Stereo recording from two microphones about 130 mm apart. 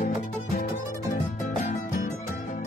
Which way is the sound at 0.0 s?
75° left (ahead or behind).